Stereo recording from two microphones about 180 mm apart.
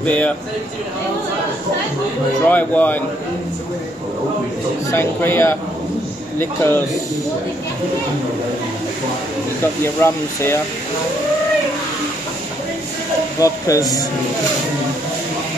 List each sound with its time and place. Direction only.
0.0 s a man's voice: 5° left (ahead or behind)
2.5 s speech: 10° left (ahead or behind)
4.9 s speech: 10° left (ahead or behind)
10.0 s speech: 15° left (ahead or behind)
13.4 s speech: 20° left (ahead or behind)